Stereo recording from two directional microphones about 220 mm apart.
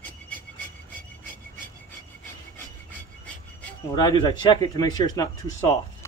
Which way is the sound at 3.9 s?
20° left (ahead or behind).